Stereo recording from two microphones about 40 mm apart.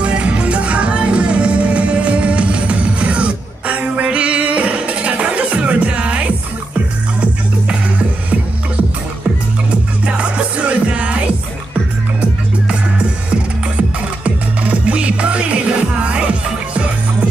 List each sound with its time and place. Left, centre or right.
0.0 s music: right
10.0 s music: right
14.2 s music: right